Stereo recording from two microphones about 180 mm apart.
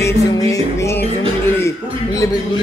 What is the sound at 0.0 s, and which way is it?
Music, 15° left (ahead or behind).